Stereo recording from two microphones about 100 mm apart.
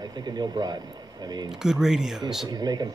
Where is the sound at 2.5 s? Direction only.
45° right (ahead or behind).